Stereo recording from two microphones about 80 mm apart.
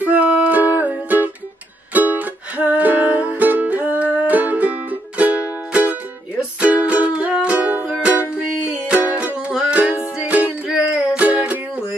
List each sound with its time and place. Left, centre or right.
0.0 s music: centre